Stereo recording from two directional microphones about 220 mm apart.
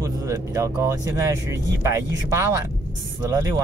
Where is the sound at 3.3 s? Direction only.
15° right (ahead or behind).